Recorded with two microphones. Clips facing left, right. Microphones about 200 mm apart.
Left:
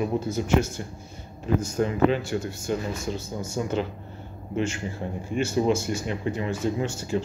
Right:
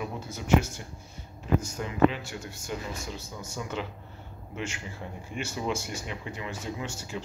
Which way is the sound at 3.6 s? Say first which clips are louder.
Left 8 dB; 35° left (ahead or behind).